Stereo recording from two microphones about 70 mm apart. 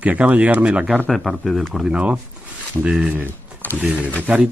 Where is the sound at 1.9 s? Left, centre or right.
Centre.